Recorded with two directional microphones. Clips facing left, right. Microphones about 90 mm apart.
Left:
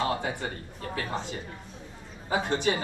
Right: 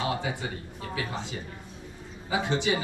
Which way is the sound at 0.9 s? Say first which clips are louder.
Left 1 dB; 45° left (ahead or behind).